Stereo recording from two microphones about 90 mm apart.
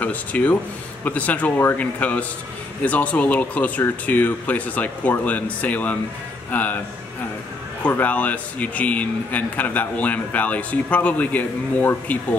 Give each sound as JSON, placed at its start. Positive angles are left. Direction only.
{"t": 0.0, "sound": "speech", "side_deg": 15}
{"t": 7.8, "sound": "speech", "side_deg": 15}